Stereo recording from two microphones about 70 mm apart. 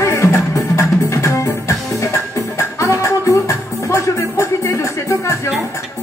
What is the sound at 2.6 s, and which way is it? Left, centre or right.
Music, left.